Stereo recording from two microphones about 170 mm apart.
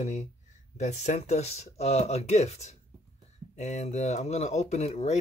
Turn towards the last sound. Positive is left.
turn(degrees=40)  # may be behind; listen again after turning